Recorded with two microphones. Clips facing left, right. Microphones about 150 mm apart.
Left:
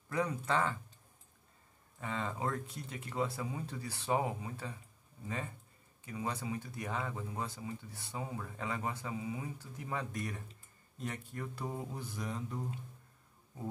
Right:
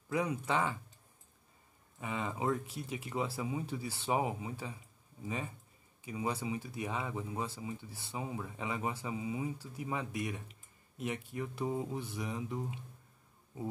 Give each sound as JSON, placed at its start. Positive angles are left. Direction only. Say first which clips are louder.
{"t": 0.1, "sound": "speech", "louder": "right 1 dB", "side_deg": -10}
{"t": 2.0, "sound": "speech", "louder": "right 1 dB", "side_deg": -15}
{"t": 11.6, "sound": "speech", "louder": "right 7 dB", "side_deg": -15}